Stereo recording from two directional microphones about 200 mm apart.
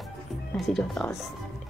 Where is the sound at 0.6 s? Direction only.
5° left (ahead or behind).